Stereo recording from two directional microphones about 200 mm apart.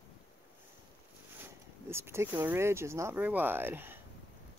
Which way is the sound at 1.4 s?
10° right (ahead or behind).